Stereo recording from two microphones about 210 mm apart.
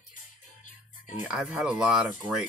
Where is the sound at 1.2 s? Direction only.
5° right (ahead or behind).